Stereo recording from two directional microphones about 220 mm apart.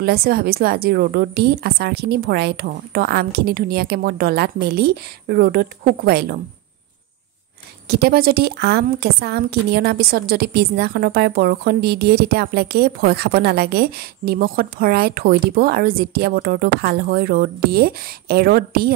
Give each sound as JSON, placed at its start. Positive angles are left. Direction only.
{"t": 0.0, "sound": "a woman's voice", "side_deg": -45}
{"t": 7.9, "sound": "a woman's voice", "side_deg": -45}